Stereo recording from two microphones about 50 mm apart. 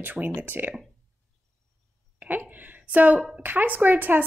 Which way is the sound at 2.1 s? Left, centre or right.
Right.